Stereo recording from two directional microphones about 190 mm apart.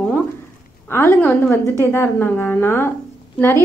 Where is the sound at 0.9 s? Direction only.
10° left (ahead or behind).